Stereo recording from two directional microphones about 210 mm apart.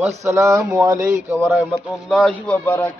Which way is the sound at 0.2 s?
15° right (ahead or behind).